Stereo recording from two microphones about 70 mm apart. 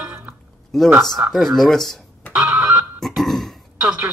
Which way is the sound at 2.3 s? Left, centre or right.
Right.